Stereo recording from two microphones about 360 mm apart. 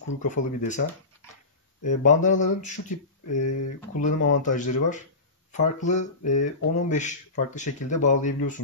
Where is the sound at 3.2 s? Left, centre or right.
Left.